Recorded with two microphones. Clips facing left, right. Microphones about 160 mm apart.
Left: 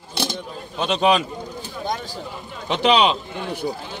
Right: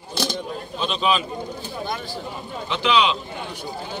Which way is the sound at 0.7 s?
75° left (ahead or behind).